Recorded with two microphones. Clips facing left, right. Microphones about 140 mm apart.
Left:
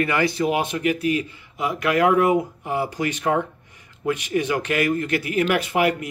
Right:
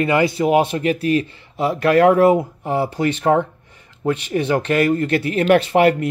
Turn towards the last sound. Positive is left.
turn(degrees=-35)  # may be behind; listen again after turning